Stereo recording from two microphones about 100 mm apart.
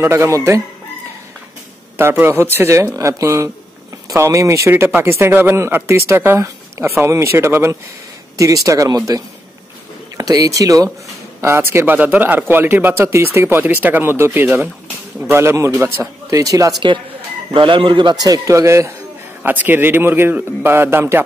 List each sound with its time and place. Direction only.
0.0 s speech: 25° right (ahead or behind)
2.0 s speech: 25° right (ahead or behind)
17.5 s speech: 55° right (ahead or behind); by 18.9 s 30° right (ahead or behind)
19.4 s speech: 20° right (ahead or behind)